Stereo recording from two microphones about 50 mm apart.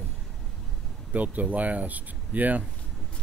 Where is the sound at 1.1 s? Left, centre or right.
Right.